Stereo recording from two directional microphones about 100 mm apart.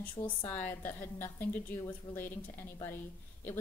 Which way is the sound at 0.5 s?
20° left (ahead or behind).